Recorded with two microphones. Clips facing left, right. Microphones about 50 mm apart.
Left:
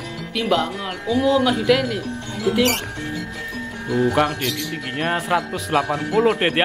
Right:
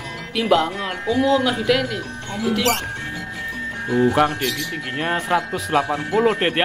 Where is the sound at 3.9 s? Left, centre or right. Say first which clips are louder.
Right 2 dB; right.